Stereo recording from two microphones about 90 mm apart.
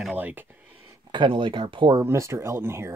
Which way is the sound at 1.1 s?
65° right (ahead or behind).